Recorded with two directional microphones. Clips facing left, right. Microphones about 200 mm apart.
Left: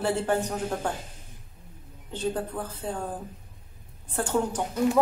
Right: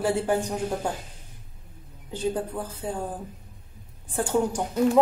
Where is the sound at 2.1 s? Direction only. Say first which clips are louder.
Right 2 dB; 10° right (ahead or behind).